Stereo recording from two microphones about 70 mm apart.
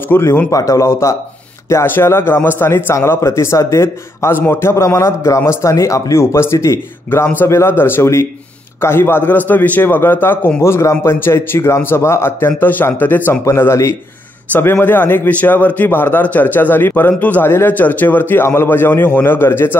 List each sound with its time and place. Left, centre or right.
0.1 s a man's voice: left
0.5 s speech: left
1.9 s a man's voice: left
10.6 s a man's voice: left
13.5 s a man's voice: left